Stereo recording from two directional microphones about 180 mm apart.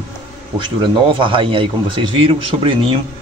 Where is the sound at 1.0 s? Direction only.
30° right (ahead or behind).